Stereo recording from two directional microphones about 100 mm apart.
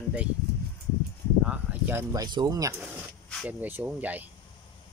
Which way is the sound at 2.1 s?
40° right (ahead or behind).